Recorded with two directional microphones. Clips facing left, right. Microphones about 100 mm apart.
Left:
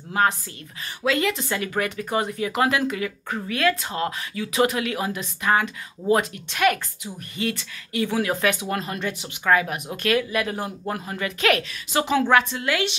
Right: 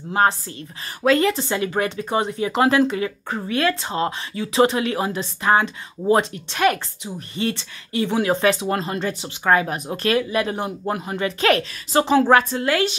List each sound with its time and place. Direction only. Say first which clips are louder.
0.1 s a woman's voice: right 3 dB; 30° right (ahead or behind)